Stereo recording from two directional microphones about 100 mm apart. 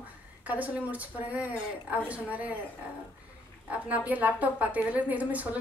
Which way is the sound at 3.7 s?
15° right (ahead or behind).